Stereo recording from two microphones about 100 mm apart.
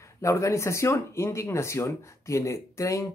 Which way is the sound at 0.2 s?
30° left (ahead or behind).